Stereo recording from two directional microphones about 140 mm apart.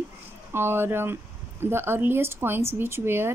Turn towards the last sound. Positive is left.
turn(degrees=-15)  # may be behind; listen again after turning